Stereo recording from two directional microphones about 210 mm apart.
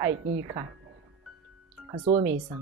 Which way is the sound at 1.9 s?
25° right (ahead or behind).